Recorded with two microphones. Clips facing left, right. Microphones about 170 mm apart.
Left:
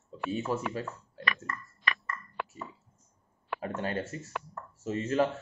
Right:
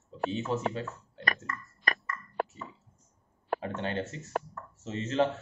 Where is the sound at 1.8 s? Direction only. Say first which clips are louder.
Right 2 dB; 40° right (ahead or behind).